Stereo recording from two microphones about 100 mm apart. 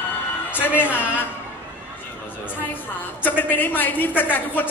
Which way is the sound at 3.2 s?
20° left (ahead or behind).